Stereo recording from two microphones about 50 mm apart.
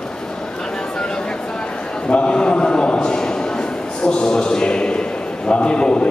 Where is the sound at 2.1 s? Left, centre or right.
Left.